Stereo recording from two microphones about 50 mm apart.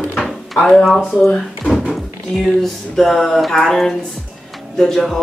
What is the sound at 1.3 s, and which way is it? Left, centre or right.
Drawer open or close, centre.